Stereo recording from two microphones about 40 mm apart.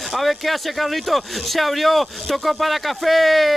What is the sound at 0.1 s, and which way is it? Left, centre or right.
Speech, centre.